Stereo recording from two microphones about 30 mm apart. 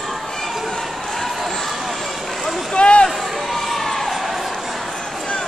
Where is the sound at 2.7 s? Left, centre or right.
Left.